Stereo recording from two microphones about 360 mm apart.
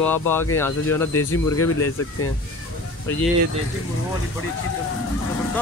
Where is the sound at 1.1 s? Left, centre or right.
Left.